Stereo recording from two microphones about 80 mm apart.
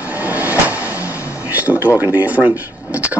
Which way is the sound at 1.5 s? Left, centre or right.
Right.